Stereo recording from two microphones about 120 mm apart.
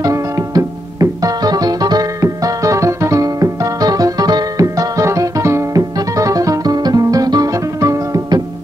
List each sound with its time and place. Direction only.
0.0 s music: 30° right (ahead or behind)